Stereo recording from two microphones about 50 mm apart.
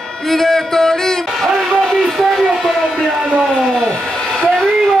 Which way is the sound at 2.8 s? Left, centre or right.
Centre.